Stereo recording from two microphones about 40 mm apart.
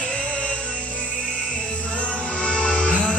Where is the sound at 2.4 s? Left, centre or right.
Left.